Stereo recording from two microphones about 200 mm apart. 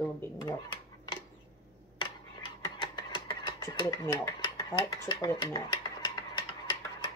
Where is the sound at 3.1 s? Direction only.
20° left (ahead or behind).